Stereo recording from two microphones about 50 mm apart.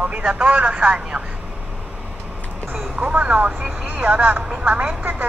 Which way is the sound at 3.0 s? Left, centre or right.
Right.